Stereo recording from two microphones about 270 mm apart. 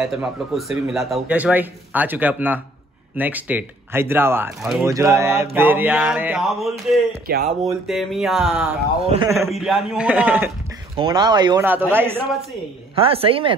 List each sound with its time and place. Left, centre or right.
0.0 s speech: centre
3.2 s mantra: centre
4.8 s mantra: centre
7.2 s speech: right
7.8 s speech: centre
9.0 s speech: right
9.5 s speech: centre
11.0 s mantra: centre
12.9 s speech: right